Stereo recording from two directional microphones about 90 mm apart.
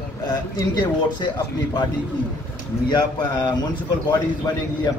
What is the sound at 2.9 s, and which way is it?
Speech, 50° left (ahead or behind).